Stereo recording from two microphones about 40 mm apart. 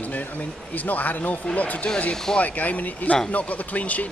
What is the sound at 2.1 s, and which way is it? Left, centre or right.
Speech, centre.